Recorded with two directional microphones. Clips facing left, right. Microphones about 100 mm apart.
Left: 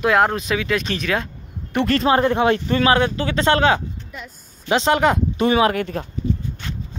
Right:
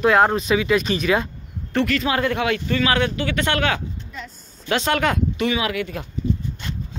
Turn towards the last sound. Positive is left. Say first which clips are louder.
# left 6 dB
turn(degrees=40)  # may be behind; listen again after turning